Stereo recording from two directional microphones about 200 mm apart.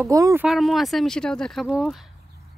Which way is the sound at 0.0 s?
15° right (ahead or behind).